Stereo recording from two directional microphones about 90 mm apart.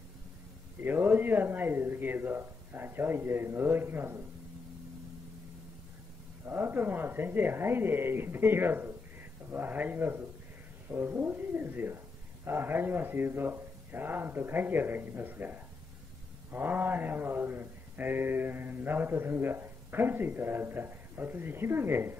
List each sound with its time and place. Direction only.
0.8 s speech: 25° right (ahead or behind)
6.4 s speech: 25° right (ahead or behind)